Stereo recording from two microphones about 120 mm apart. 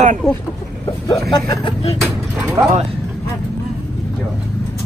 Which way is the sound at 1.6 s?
50° left (ahead or behind).